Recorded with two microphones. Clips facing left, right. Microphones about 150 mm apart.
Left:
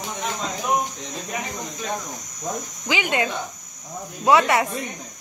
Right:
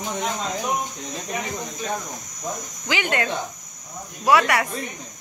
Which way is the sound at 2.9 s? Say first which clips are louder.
Left 1 dB; 15° left (ahead or behind).